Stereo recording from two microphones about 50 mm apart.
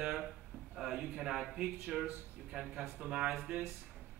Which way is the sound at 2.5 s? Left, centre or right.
Centre.